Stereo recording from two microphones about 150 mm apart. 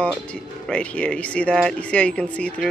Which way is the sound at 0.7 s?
5° left (ahead or behind).